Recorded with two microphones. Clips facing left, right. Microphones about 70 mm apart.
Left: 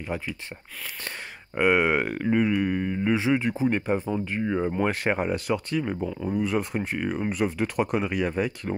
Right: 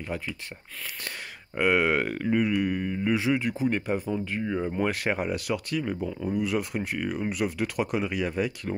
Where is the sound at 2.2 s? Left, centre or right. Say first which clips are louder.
Left 2 dB; left.